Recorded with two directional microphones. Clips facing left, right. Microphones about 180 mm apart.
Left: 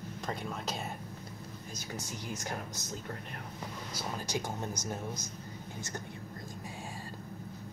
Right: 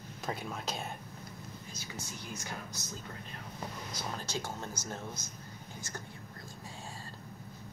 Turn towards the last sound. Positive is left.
turn(degrees=20)  # may be behind; listen again after turning